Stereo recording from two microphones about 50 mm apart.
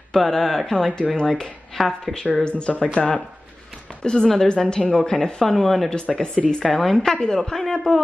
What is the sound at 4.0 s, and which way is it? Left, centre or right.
Speech, centre.